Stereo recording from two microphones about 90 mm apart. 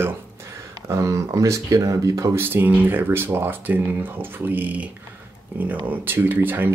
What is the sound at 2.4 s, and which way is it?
Speech, 20° right (ahead or behind).